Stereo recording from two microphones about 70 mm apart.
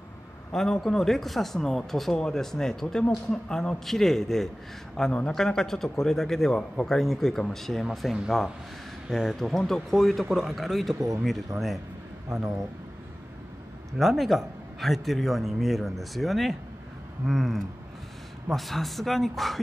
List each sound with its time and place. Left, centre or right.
0.5 s a man's voice: centre
13.9 s a man's voice: centre